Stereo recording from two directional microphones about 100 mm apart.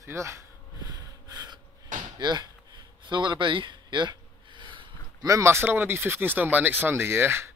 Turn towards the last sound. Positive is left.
turn(degrees=-25)  # may be behind; listen again after turning